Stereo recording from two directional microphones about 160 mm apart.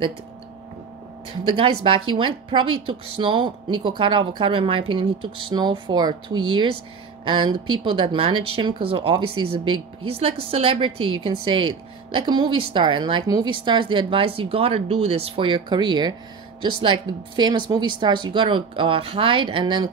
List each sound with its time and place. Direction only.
1.4 s a woman's voice: 30° right (ahead or behind)